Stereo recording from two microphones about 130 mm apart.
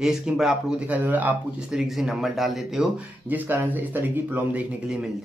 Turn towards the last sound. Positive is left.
turn(degrees=-15)  # may be behind; listen again after turning